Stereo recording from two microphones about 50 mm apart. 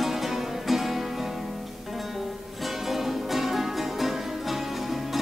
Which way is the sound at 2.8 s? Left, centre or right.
Centre.